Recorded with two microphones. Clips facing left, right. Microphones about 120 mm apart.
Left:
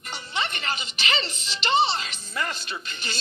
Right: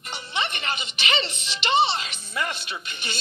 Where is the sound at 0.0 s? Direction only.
10° right (ahead or behind).